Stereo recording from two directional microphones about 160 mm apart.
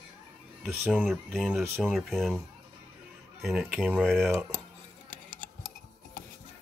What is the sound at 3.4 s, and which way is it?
Speech, centre (ahead or behind).